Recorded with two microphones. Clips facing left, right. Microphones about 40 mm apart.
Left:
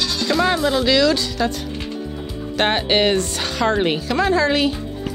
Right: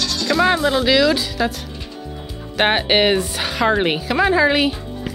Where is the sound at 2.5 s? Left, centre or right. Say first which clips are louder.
Right 2 dB; centre.